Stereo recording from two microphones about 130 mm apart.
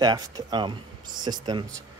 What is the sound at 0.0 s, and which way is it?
Speech, 35° right (ahead or behind).